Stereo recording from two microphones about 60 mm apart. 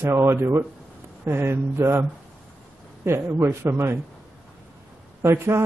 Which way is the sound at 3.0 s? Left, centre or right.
Right.